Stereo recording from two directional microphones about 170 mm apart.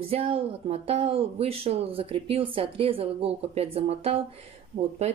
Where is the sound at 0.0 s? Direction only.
35° right (ahead or behind).